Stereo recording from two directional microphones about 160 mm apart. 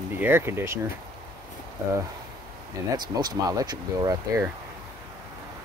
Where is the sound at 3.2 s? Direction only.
25° right (ahead or behind).